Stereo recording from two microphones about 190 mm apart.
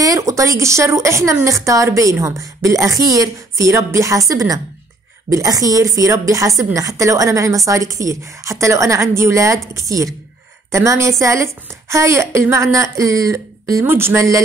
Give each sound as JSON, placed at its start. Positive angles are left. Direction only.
{"t": 0.0, "sound": "a woman's voice", "side_deg": -15}